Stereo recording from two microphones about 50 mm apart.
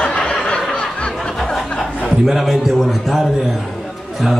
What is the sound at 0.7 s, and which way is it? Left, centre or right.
Snicker, left.